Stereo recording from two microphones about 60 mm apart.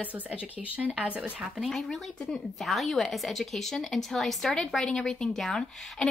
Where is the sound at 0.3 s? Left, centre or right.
Right.